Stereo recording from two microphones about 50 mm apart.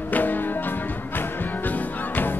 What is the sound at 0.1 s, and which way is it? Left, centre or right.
Music, left.